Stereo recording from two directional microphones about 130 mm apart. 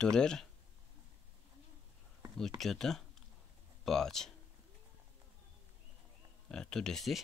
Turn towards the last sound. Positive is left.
turn(degrees=5)  # may be behind; listen again after turning